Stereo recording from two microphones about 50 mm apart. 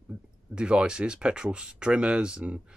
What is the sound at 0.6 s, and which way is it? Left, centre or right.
Speech, centre.